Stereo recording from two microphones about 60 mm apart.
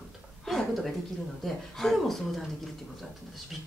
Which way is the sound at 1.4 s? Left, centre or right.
Centre.